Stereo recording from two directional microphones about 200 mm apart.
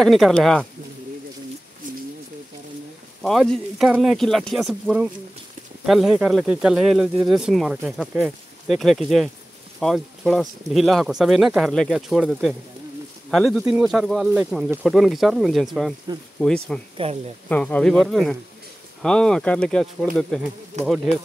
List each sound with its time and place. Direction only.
0.0 s speech: centre (ahead or behind)
3.2 s speech: centre (ahead or behind)
16.9 s speech: 30° right (ahead or behind)
17.5 s speech: 5° left (ahead or behind)